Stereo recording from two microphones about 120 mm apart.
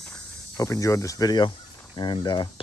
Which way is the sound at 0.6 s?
25° left (ahead or behind).